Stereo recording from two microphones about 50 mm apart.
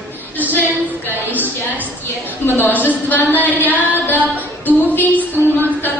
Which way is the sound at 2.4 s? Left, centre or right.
Left.